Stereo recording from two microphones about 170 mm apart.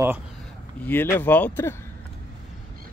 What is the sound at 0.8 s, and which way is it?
Speech, 10° left (ahead or behind).